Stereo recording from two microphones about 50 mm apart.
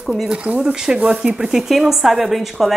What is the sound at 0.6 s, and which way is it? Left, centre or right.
A woman's voice, centre.